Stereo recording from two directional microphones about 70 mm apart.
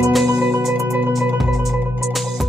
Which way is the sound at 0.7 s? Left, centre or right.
Right.